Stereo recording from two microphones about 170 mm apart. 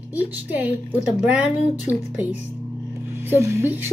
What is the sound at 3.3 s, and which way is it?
Speech, 15° right (ahead or behind).